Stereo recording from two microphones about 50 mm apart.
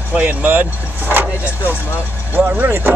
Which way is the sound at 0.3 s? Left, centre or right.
Right.